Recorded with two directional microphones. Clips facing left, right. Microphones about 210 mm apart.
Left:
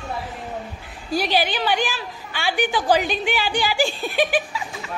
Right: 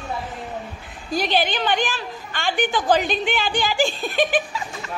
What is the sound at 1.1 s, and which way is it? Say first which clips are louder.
A woman's voice: even; 10° left (ahead or behind).